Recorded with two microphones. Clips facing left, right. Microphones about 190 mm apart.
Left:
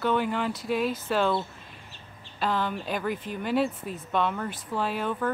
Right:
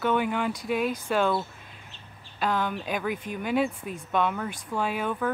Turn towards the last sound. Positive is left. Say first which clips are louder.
# even
turn(degrees=-5)  # may be behind; listen again after turning